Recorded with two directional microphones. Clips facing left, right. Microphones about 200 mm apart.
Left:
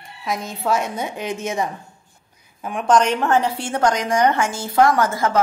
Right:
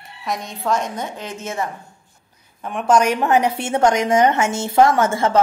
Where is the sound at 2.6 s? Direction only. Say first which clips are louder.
Right 1 dB; centre (ahead or behind).